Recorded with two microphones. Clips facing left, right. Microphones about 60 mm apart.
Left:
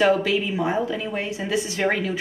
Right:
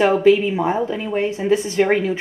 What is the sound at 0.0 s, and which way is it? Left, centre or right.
A woman's voice, right.